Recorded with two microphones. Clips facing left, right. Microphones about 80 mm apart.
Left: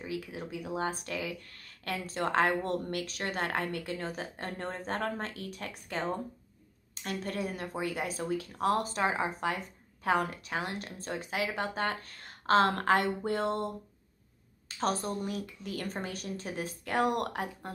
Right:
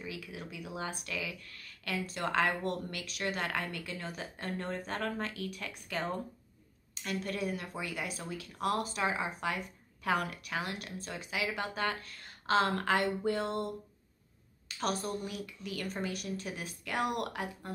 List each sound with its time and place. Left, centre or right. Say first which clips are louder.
0.0 s speech: left 5 dB; left
7.0 s speech: left 1 dB; left
14.8 s speech: left 3 dB; left